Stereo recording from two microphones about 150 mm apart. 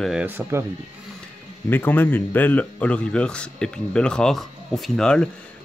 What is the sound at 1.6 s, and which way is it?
Speech, 15° left (ahead or behind).